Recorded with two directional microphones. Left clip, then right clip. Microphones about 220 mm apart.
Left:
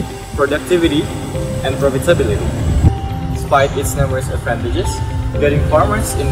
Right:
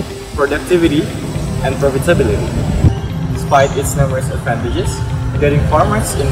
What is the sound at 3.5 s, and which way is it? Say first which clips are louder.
Speech: right 2 dB; centre (ahead or behind).